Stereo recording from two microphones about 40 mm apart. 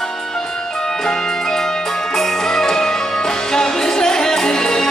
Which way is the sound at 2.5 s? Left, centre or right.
Centre.